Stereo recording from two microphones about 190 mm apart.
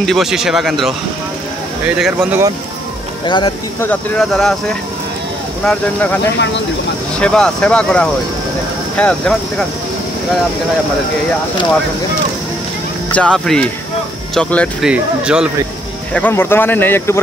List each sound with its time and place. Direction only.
0.0 s speech: centre (ahead or behind)
2.0 s speech: 5° right (ahead or behind)
3.3 s speech: 25° left (ahead or behind)
3.8 s speech: 10° left (ahead or behind)
7.2 s speech: 5° left (ahead or behind)
13.1 s speech: 5° left (ahead or behind)
14.9 s speech: 5° right (ahead or behind)
16.1 s speech: 10° left (ahead or behind)